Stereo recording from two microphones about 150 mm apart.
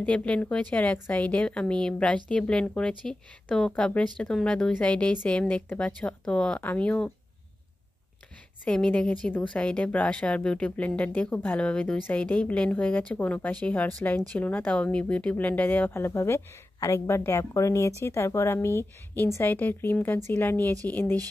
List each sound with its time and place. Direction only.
0.0 s speech: 10° left (ahead or behind)
8.6 s speech: 5° left (ahead or behind)